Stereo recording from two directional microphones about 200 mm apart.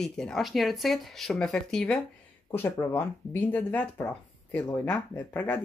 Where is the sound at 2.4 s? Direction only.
10° left (ahead or behind).